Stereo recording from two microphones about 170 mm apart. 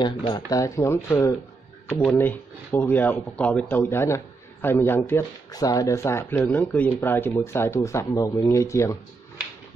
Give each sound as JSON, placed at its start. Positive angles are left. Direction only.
{"t": 0.3, "sound": "speech", "side_deg": 20}